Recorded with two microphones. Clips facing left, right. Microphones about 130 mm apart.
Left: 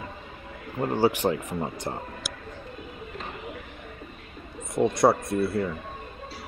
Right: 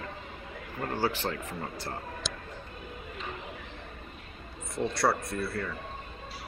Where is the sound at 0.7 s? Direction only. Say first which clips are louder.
Left 7 dB; 15° left (ahead or behind).